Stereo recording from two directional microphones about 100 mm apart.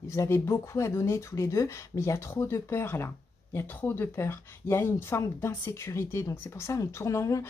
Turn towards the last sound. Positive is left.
turn(degrees=30)  # may be behind; listen again after turning